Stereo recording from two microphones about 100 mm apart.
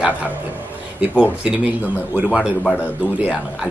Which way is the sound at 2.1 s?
10° right (ahead or behind).